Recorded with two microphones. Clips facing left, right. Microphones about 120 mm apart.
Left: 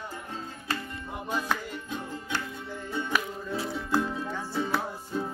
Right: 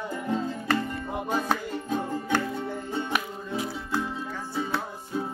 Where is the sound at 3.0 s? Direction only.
20° right (ahead or behind).